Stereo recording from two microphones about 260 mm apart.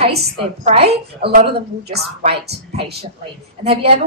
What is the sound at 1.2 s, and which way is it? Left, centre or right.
A woman's voice, right.